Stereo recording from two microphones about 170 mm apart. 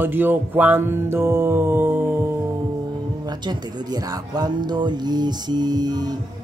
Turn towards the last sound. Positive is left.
turn(degrees=-25)  # may be behind; listen again after turning